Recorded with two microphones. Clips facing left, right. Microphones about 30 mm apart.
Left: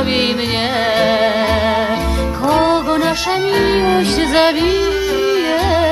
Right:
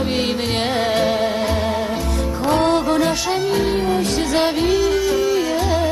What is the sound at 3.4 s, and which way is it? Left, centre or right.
Music, left.